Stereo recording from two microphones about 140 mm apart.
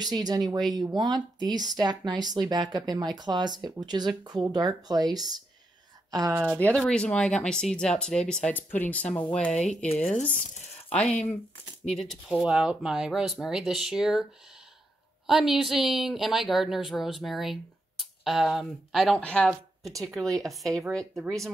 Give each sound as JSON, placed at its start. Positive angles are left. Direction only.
{"t": 0.0, "sound": "speech", "side_deg": -30}
{"t": 6.4, "sound": "speech", "side_deg": -15}
{"t": 6.7, "sound": "speech", "side_deg": 5}
{"t": 11.9, "sound": "speech", "side_deg": 0}
{"t": 15.2, "sound": "speech", "side_deg": -5}